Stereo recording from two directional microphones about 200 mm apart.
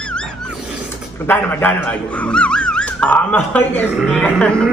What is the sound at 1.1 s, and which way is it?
Speech, 10° left (ahead or behind).